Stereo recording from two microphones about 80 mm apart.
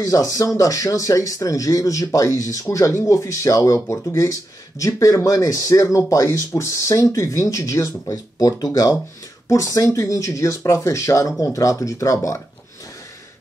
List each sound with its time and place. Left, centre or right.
0.0 s speech: left